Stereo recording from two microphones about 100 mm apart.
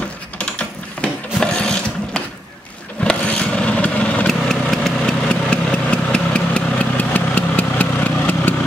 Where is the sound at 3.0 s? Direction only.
10° left (ahead or behind).